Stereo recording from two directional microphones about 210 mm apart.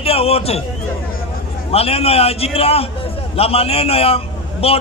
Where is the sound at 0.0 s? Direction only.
30° left (ahead or behind).